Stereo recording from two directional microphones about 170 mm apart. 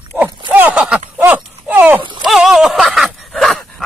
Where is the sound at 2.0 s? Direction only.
25° right (ahead or behind).